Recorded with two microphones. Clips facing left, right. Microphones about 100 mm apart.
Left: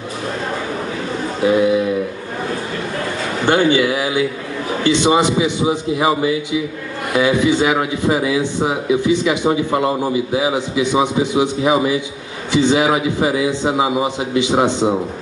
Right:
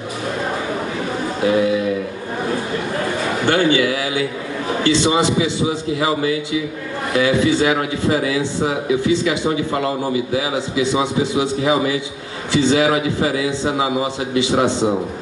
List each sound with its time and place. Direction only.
3.4 s a man's voice: 25° left (ahead or behind)